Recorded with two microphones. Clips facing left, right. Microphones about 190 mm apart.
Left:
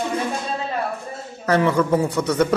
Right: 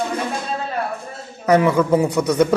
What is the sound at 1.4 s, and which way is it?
Speech, 10° right (ahead or behind).